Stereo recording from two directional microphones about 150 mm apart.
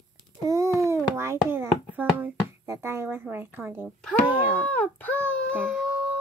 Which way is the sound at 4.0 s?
5° left (ahead or behind).